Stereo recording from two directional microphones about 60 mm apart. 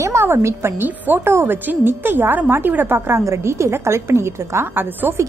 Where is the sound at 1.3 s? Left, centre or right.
Right.